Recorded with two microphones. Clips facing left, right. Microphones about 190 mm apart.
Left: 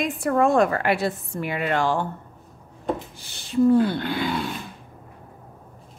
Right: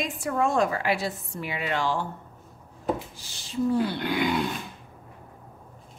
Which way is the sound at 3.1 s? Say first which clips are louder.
Left 8 dB; 60° left (ahead or behind).